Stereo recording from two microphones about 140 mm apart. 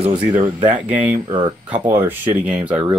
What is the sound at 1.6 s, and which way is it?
Speech, 15° right (ahead or behind).